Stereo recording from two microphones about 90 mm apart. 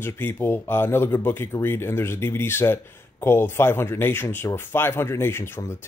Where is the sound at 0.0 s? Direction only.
25° left (ahead or behind).